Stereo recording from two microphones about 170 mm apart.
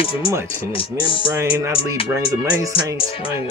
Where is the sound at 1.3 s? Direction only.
15° right (ahead or behind).